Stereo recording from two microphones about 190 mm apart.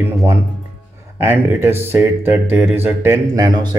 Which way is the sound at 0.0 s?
15° right (ahead or behind).